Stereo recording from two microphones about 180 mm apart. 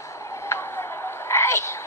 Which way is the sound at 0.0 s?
15° left (ahead or behind).